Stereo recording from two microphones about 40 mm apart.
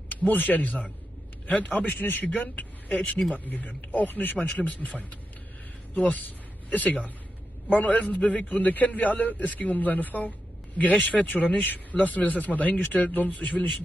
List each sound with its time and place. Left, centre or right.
0.1 s a man's voice: left